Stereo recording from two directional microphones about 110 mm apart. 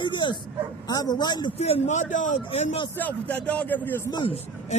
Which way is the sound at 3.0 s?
10° left (ahead or behind).